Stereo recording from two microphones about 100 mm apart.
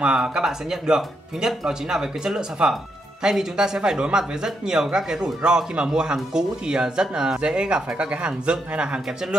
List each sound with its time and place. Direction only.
0.0 s speech: 10° right (ahead or behind)